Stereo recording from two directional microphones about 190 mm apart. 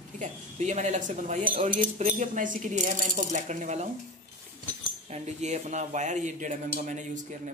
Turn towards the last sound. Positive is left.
turn(degrees=-40)  # may be behind; listen again after turning